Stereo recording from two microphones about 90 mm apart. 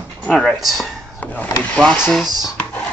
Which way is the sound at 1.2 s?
20° left (ahead or behind).